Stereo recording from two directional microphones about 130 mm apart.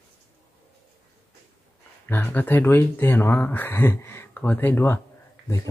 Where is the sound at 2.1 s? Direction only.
15° left (ahead or behind).